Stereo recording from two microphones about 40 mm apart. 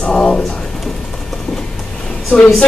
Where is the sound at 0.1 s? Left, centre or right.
Centre.